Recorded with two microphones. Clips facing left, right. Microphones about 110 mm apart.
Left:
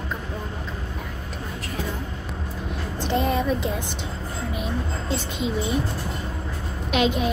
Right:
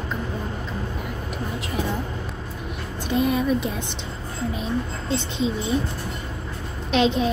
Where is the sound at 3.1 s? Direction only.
30° left (ahead or behind).